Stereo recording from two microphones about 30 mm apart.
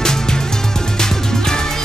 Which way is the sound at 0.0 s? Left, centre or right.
Left.